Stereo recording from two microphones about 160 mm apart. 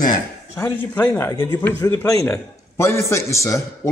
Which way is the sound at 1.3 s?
25° left (ahead or behind).